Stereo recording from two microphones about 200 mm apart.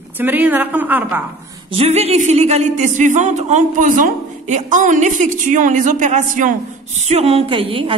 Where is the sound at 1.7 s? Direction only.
30° right (ahead or behind).